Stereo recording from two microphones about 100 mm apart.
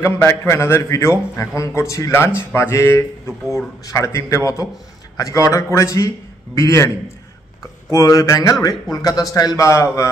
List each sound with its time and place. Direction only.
0.0 s a man's voice: 30° left (ahead or behind)
7.9 s speech: 35° left (ahead or behind)